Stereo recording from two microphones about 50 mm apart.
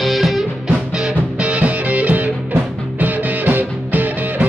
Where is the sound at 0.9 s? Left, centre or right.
Centre.